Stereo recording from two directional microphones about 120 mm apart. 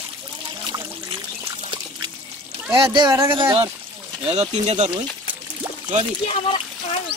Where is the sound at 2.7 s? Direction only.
40° right (ahead or behind).